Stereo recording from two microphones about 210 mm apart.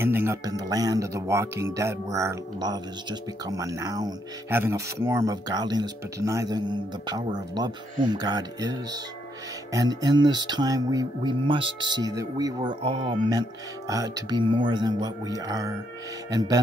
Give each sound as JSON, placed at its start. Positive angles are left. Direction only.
{"t": 0.0, "sound": "speech", "side_deg": -10}
{"t": 7.3, "sound": "music", "side_deg": -20}
{"t": 16.3, "sound": "speech", "side_deg": -15}